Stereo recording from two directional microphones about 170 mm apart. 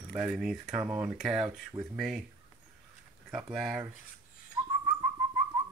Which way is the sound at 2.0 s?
Centre (ahead or behind).